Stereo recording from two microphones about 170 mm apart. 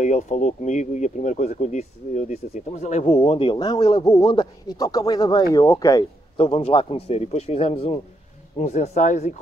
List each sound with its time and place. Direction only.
0.0 s speech: 45° left (ahead or behind)
3.2 s speech: 30° left (ahead or behind)
6.3 s speech: 35° left (ahead or behind)